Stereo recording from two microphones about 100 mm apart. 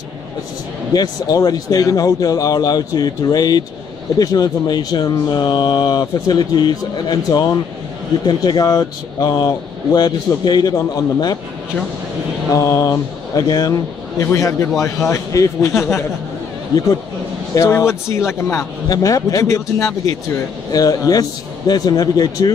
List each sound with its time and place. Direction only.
0.9 s a man's voice: 40° left (ahead or behind)
12.5 s a man's voice: 30° left (ahead or behind)
17.6 s a man's voice: 25° left (ahead or behind)